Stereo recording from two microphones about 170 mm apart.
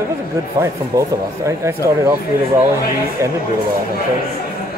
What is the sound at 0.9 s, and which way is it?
Speech, 20° right (ahead or behind).